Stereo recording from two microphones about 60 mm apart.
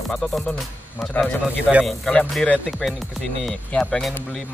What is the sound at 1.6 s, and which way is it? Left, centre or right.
Speech, right.